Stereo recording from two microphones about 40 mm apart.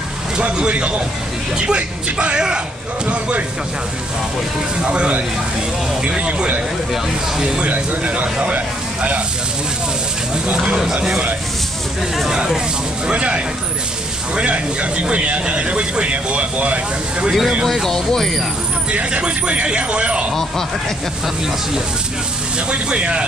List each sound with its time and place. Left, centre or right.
0.4 s speech: right
2.1 s speech: right
3.1 s speech: right
4.8 s speech: right
6.9 s speech: centre
7.6 s speech: right
12.3 s speech: centre
13.0 s speech: right
17.3 s speech: centre
17.8 s speech: centre
18.9 s speech: right
22.7 s speech: right